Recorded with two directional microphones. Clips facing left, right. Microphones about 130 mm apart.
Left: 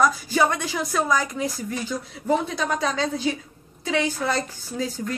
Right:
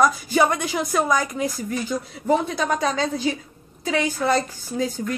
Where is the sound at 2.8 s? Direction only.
45° right (ahead or behind).